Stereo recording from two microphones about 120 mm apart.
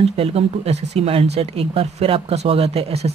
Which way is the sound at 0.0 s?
55° right (ahead or behind).